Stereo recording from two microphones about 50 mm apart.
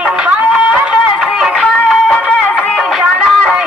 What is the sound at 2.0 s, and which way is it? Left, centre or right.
Music, centre.